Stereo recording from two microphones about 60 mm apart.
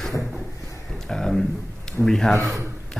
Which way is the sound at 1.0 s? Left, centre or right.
Centre.